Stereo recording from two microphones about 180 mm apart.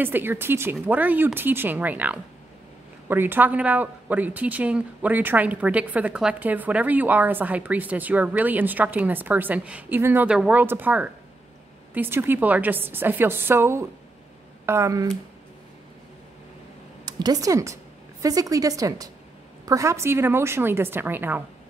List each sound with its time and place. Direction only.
0.0 s speech: 10° right (ahead or behind)
17.0 s a woman's voice: 20° right (ahead or behind)